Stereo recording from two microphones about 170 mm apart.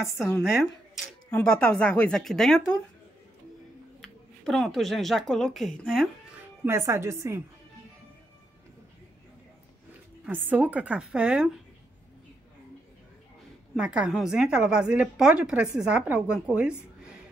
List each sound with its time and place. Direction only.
0.4 s a woman's voice: centre (ahead or behind)
4.0 s speech: centre (ahead or behind)
6.6 s a woman's voice: 15° right (ahead or behind)
10.2 s a woman's voice: 10° right (ahead or behind)
13.7 s a woman's voice: 5° right (ahead or behind)